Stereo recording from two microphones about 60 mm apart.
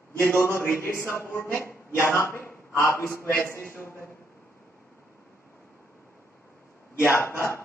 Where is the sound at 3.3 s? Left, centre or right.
Left.